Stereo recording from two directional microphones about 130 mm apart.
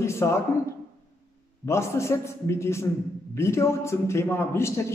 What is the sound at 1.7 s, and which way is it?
A man's voice, 20° left (ahead or behind).